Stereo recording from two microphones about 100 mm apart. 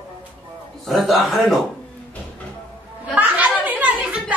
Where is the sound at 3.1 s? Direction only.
15° right (ahead or behind).